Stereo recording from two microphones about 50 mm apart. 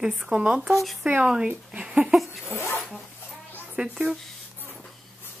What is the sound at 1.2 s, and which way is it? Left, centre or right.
Speech, centre.